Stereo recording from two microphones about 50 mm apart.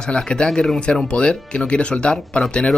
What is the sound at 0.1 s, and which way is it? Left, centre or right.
Speech, centre.